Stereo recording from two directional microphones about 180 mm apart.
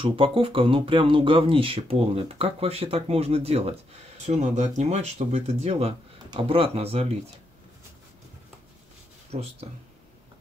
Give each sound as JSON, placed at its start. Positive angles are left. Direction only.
{"t": 0.0, "sound": "speech", "side_deg": -30}
{"t": 9.3, "sound": "speech", "side_deg": -35}